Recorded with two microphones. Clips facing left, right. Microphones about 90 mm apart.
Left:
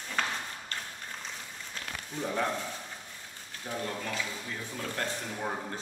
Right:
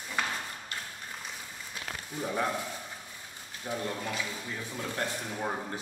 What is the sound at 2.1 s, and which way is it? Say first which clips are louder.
Speech: even; 5° right (ahead or behind).